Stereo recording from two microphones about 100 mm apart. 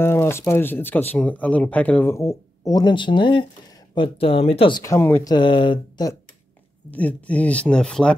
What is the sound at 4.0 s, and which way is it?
Speech, 65° left (ahead or behind).